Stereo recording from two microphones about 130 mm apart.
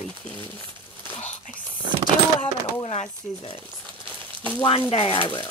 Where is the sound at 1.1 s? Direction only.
60° left (ahead or behind).